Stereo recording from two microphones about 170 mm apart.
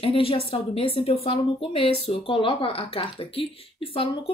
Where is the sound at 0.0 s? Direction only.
35° left (ahead or behind).